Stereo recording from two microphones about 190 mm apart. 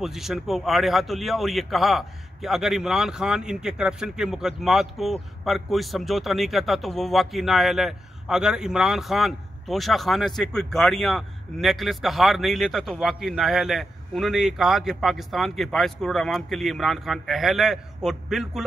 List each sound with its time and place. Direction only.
0.0 s a man's voice: centre (ahead or behind)